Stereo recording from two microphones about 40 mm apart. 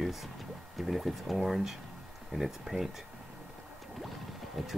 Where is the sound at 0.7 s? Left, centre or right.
Centre.